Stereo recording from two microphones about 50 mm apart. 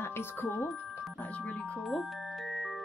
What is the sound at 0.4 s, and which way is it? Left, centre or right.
Speech, left.